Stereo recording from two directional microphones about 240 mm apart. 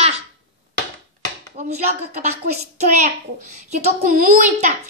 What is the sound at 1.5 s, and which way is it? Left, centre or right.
A woman's voice, right.